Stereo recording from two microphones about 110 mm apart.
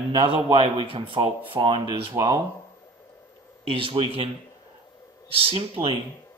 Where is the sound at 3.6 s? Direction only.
55° right (ahead or behind).